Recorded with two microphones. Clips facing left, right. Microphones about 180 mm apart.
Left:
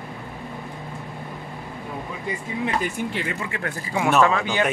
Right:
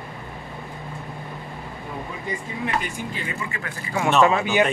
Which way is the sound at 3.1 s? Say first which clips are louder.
Left 3 dB; 75° left (ahead or behind).